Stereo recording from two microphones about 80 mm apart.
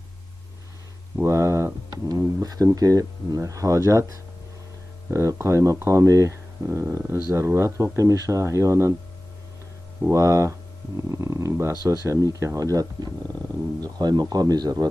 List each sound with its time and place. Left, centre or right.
1.2 s a sound: right
2.0 s speech: right
10.1 s speech: right
11.7 s speech: right
12.1 s speech: right